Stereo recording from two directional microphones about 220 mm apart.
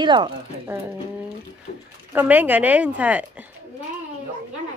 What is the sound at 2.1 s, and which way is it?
Speech, 10° right (ahead or behind).